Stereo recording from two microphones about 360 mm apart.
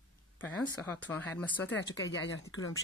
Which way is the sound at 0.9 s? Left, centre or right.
Centre.